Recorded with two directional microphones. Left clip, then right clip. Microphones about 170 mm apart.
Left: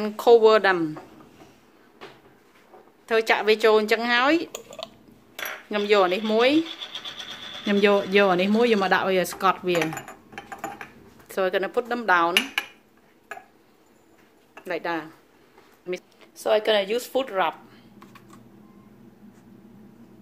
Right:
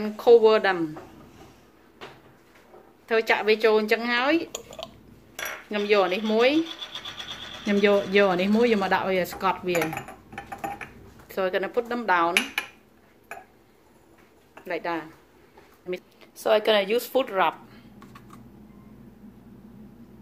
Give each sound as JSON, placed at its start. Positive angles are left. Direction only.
{"t": 0.0, "sound": "speech", "side_deg": 40}
{"t": 3.1, "sound": "speech", "side_deg": 35}
{"t": 4.5, "sound": "a sound", "side_deg": 15}
{"t": 5.7, "sound": "speech", "side_deg": 35}
{"t": 7.6, "sound": "speech", "side_deg": 35}
{"t": 11.2, "sound": "speech", "side_deg": 30}
{"t": 14.6, "sound": "speech", "side_deg": 30}
{"t": 16.2, "sound": "speech", "side_deg": 5}